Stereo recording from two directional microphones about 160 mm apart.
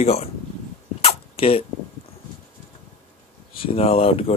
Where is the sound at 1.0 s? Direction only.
35° left (ahead or behind).